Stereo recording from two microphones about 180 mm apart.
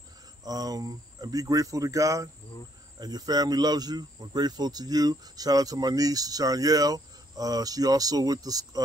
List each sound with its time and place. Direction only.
0.4 s speech: 20° right (ahead or behind)